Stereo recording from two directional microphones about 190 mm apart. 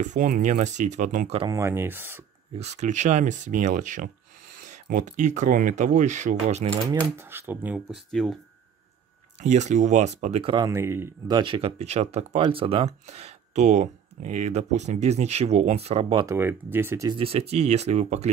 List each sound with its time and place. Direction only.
0.0 s speech: 40° right (ahead or behind)
1.5 s speech: 15° right (ahead or behind)
2.5 s speech: 35° right (ahead or behind)
7.2 s speech: 10° right (ahead or behind)
9.5 s speech: 40° right (ahead or behind)
16.3 s speech: 10° right (ahead or behind)
17.2 s speech: 30° right (ahead or behind)